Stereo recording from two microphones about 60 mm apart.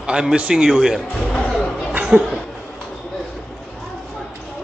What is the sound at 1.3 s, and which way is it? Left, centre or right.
Music, centre.